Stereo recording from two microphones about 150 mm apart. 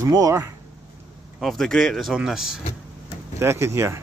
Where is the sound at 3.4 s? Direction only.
20° right (ahead or behind).